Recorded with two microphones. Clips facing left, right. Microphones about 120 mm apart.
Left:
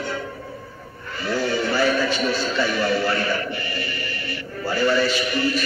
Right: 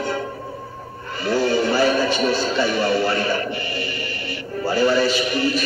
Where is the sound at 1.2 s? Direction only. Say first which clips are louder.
Right 4 dB; 30° right (ahead or behind).